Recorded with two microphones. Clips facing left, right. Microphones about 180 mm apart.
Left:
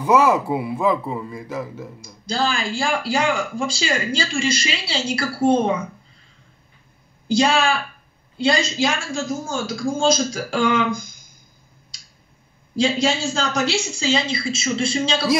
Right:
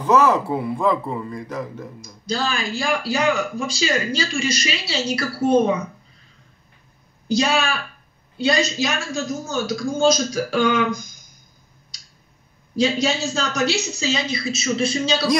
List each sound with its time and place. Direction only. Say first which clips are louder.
0.0 s speech: even; 10° left (ahead or behind)
2.2 s speech: left 1 dB; 30° left (ahead or behind)
7.2 s speech: left 2 dB; 30° left (ahead or behind)
12.7 s speech: even; 30° left (ahead or behind)